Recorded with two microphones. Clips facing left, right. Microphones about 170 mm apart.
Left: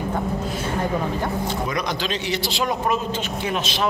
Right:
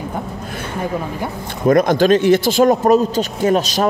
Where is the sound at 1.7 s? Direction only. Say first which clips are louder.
Right 14 dB; 50° right (ahead or behind).